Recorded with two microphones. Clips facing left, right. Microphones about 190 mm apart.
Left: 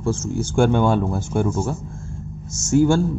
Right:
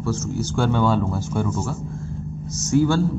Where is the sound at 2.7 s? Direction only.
45° left (ahead or behind).